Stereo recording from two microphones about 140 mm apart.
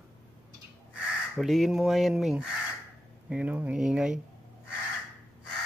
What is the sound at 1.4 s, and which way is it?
Speech, centre (ahead or behind).